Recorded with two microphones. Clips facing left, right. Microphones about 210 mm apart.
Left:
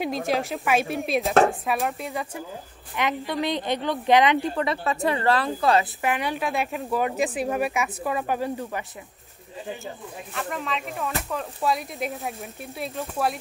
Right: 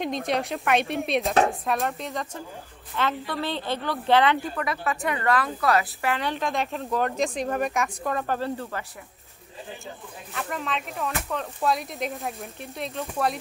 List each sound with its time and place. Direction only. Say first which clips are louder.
0.3 s a woman's voice: even; centre (ahead or behind)
4.6 s a woman's voice: left 3 dB; 30° left (ahead or behind); by 8.8 s 15° left (ahead or behind)
10.3 s speech: even; centre (ahead or behind)